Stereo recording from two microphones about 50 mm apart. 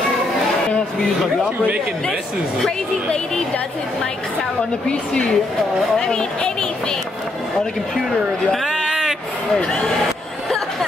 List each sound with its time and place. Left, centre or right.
4.8 s speech: centre
8.6 s a sound: centre
9.6 s speech: centre